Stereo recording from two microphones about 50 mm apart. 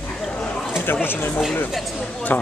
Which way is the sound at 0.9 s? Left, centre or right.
Left.